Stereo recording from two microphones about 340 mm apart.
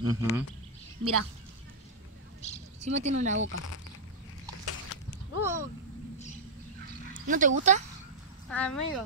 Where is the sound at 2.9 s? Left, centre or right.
Centre.